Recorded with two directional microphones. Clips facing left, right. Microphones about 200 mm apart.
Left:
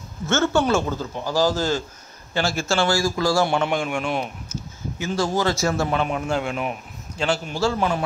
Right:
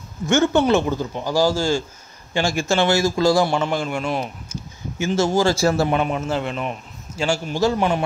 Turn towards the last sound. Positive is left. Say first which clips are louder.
# right 3 dB
turn(degrees=-15)  # may be behind; listen again after turning